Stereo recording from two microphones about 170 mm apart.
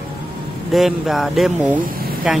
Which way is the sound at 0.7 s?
Centre (ahead or behind).